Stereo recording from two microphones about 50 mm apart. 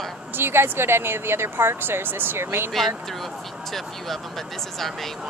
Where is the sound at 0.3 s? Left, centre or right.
Right.